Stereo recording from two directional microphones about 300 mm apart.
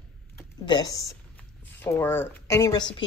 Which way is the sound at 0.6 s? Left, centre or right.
Centre.